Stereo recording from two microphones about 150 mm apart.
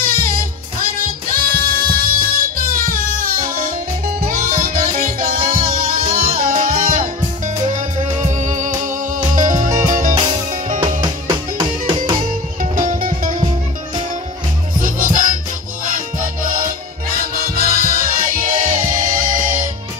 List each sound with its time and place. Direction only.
0.0 s music: 75° right (ahead or behind)
7.7 s music: 55° right (ahead or behind)
11.0 s music: 25° right (ahead or behind)
12.7 s music: 65° right (ahead or behind)
14.8 s music: 65° right (ahead or behind)